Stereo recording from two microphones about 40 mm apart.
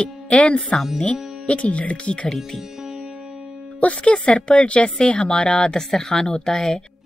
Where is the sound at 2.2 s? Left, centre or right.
Centre.